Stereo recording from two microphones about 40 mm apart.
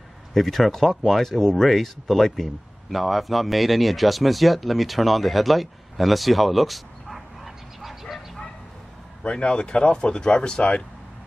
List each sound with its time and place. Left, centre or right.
0.3 s speech: centre
9.2 s speech: left